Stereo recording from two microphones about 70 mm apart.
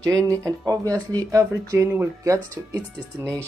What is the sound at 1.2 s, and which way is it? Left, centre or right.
Speech, right.